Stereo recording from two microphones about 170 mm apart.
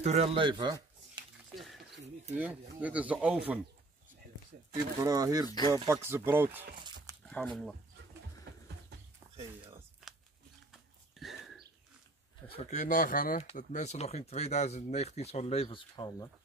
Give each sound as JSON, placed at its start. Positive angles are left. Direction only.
{"t": 0.0, "sound": "speech", "side_deg": -40}
{"t": 1.5, "sound": "a sound", "side_deg": 0}
{"t": 2.3, "sound": "speech", "side_deg": -10}
{"t": 5.0, "sound": "speech", "side_deg": -20}
{"t": 6.7, "sound": "dog", "side_deg": -25}
{"t": 7.2, "sound": "speech", "side_deg": 5}
{"t": 10.7, "sound": "a sound", "side_deg": 0}
{"t": 12.4, "sound": "speech", "side_deg": 40}
{"t": 13.4, "sound": "speech", "side_deg": 45}